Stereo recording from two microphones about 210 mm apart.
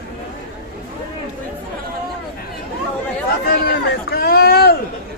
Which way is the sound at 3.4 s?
45° left (ahead or behind).